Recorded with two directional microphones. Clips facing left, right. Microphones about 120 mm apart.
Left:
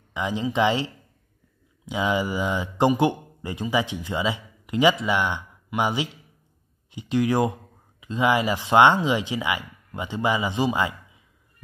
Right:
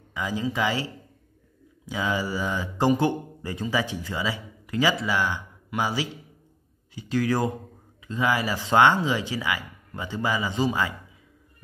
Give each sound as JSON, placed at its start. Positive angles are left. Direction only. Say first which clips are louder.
{"t": 0.1, "sound": "speech", "louder": "left 2 dB", "side_deg": 20}